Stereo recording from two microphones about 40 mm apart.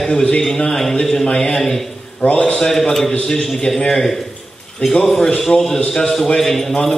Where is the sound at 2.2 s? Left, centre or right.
Left.